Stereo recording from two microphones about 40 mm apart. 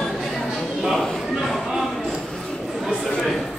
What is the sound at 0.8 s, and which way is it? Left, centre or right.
Speech, centre.